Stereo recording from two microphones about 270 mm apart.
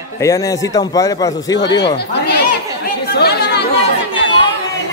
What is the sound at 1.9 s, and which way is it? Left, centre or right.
Speech, left.